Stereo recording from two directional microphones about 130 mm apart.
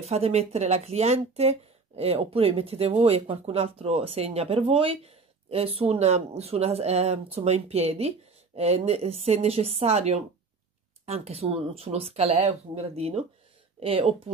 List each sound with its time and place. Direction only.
0.0 s speech: 55° right (ahead or behind)